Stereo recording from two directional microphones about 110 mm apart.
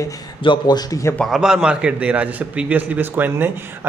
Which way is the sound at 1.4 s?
5° right (ahead or behind).